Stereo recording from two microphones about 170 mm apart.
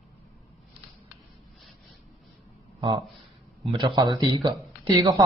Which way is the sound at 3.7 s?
25° right (ahead or behind).